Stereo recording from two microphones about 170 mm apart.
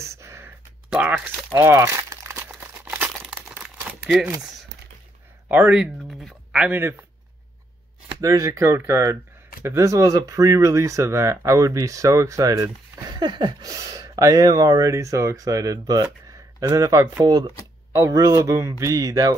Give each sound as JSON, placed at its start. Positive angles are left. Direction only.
{"t": 0.0, "sound": "a sound", "side_deg": -15}
{"t": 0.8, "sound": "speech", "side_deg": -5}
{"t": 1.5, "sound": "crumpling", "side_deg": -15}
{"t": 5.5, "sound": "speech", "side_deg": -10}
{"t": 8.2, "sound": "speech", "side_deg": -20}